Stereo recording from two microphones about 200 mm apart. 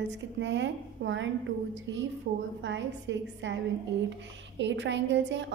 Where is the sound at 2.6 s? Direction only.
65° right (ahead or behind).